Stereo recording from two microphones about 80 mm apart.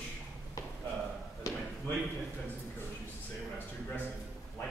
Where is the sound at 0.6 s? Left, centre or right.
Left.